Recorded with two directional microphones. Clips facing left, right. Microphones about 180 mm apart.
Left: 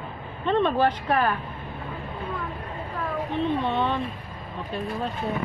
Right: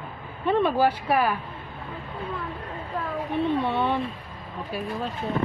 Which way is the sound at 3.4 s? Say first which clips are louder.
Right 1 dB; 10° right (ahead or behind).